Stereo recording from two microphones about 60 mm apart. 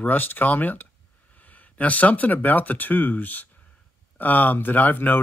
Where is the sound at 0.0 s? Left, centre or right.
Left.